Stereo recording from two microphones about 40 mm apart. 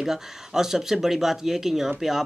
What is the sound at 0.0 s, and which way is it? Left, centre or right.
Speech, centre.